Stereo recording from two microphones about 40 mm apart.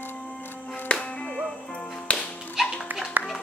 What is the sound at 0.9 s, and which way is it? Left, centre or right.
Music, left.